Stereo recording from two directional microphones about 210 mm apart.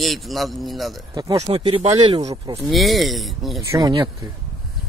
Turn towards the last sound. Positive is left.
turn(degrees=-20)  # may be behind; listen again after turning